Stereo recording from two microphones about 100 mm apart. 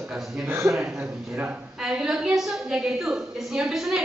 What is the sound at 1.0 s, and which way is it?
A man's voice, 15° right (ahead or behind).